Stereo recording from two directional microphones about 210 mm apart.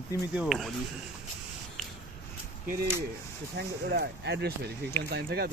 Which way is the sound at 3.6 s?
55° right (ahead or behind).